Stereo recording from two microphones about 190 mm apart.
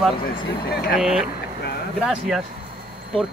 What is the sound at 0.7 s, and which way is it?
Speech, 55° left (ahead or behind).